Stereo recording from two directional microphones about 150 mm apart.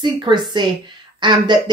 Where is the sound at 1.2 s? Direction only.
30° right (ahead or behind).